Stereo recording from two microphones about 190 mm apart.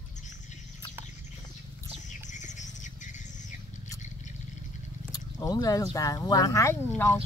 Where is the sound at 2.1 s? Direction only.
40° left (ahead or behind).